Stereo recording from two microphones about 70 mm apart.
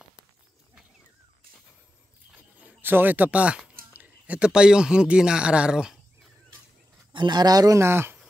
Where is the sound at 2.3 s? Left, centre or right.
Centre.